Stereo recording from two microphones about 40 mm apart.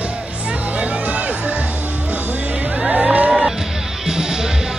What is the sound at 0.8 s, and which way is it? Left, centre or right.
Music, right.